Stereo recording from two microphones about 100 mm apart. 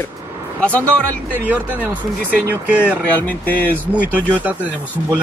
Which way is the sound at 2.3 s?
15° right (ahead or behind).